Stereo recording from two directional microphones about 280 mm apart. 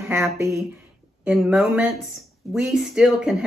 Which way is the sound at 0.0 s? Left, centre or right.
Centre.